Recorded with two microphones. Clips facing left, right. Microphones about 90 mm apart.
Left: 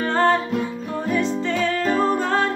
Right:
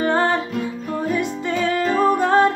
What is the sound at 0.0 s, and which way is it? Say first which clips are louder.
Music: even; 15° right (ahead or behind).